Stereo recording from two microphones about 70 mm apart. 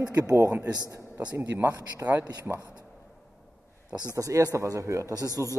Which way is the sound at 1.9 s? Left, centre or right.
Right.